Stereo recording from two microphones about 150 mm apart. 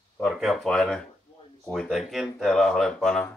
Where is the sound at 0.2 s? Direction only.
Centre (ahead or behind).